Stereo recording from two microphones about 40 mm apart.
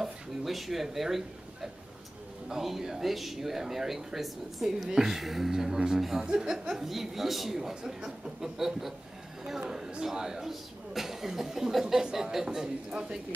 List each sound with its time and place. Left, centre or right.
0.0 s a man's voice: centre